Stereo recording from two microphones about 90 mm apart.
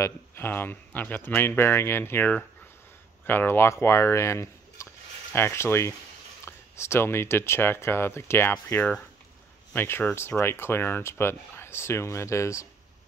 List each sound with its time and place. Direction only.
0.0 s speech: 25° left (ahead or behind)